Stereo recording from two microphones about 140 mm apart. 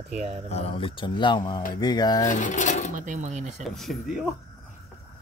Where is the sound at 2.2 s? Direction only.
65° left (ahead or behind).